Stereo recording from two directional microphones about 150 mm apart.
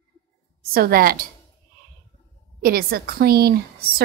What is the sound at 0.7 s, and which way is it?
Speech, 80° right.